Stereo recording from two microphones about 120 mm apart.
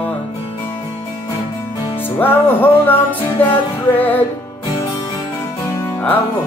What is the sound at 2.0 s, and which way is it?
Music, 15° left (ahead or behind).